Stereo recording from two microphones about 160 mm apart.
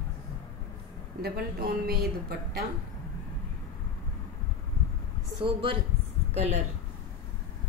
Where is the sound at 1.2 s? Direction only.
75° right (ahead or behind).